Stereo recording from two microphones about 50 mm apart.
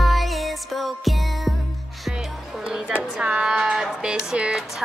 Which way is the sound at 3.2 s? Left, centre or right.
Centre.